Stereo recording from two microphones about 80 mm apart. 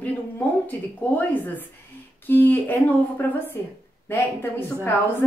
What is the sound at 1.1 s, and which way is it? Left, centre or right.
Speech, left.